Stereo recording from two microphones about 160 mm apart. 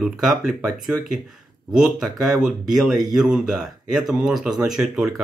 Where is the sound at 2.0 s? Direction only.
5° right (ahead or behind).